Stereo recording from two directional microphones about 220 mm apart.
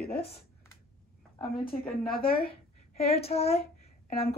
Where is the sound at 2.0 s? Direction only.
40° left (ahead or behind).